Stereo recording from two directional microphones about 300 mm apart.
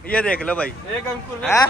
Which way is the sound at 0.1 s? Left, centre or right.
Centre.